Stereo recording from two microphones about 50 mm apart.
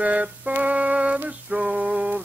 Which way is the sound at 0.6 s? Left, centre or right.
Right.